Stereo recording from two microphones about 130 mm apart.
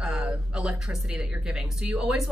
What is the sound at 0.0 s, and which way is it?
Speech, 5° right (ahead or behind).